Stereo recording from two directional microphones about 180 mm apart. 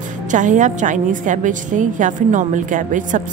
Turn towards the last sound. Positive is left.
turn(degrees=-45)  # may be behind; listen again after turning